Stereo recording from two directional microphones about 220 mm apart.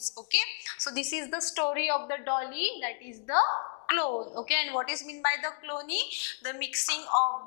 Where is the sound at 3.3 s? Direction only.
25° left (ahead or behind).